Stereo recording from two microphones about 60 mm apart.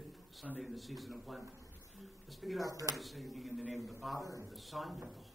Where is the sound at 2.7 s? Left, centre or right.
Right.